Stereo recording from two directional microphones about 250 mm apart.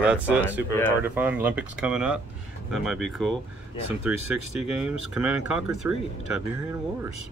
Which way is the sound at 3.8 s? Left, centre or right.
Right.